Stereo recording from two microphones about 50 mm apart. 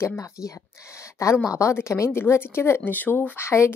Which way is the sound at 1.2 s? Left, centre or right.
Left.